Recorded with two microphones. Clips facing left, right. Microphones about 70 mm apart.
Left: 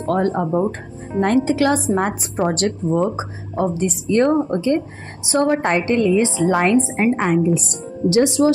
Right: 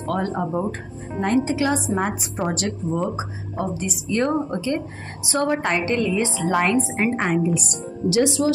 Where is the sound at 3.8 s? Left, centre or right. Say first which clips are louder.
Left 6 dB; left.